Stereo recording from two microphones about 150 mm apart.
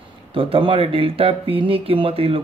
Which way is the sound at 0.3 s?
35° right (ahead or behind).